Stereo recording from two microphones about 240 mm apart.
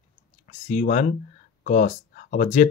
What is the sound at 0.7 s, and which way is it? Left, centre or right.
Speech, left.